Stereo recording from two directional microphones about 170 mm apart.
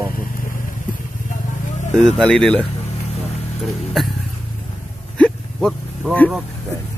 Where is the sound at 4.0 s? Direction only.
Centre (ahead or behind).